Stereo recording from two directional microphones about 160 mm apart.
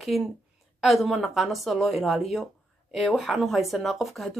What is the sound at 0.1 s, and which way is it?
Speech, centre (ahead or behind).